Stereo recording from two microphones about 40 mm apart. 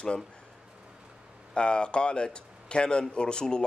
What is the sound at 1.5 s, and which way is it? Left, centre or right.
Speech, left.